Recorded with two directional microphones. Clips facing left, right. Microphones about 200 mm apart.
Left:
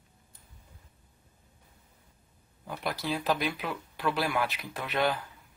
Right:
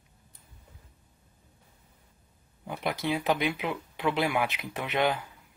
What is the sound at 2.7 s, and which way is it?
Speech, 20° right (ahead or behind).